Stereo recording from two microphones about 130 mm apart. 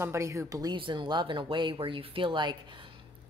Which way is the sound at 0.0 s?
20° right (ahead or behind).